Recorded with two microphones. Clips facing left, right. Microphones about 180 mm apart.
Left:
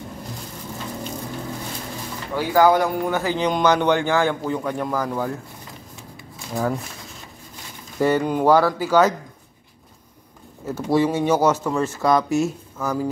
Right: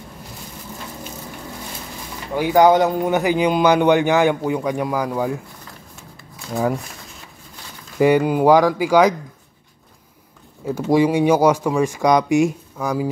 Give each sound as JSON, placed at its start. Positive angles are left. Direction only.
{"t": 2.3, "sound": "a man's voice", "side_deg": -20}
{"t": 6.5, "sound": "a man's voice", "side_deg": -15}
{"t": 8.0, "sound": "a man's voice", "side_deg": -10}
{"t": 10.7, "sound": "a man's voice", "side_deg": -15}